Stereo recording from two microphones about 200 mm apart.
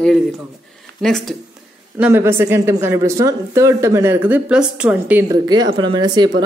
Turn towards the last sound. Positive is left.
turn(degrees=-20)  # may be behind; listen again after turning